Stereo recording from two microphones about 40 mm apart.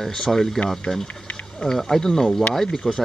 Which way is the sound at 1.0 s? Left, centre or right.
Left.